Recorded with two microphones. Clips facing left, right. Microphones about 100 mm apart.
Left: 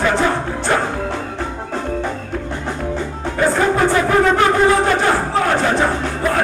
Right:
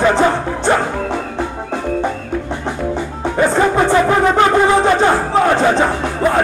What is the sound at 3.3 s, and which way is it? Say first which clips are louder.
Music: right 2 dB; 20° right (ahead or behind).